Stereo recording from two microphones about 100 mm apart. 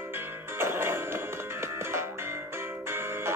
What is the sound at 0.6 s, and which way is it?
Music, 25° right (ahead or behind).